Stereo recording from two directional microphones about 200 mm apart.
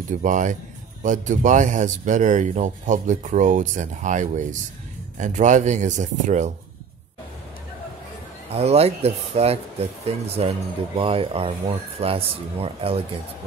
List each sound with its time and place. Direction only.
0.2 s speech: 40° right (ahead or behind)
8.5 s speech: 30° right (ahead or behind)